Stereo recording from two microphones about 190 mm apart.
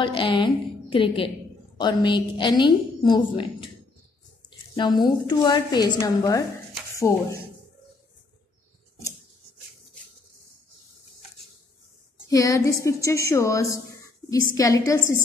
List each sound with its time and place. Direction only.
0.0 s a woman's voice: 25° left (ahead or behind)
12.3 s a woman's voice: 15° left (ahead or behind)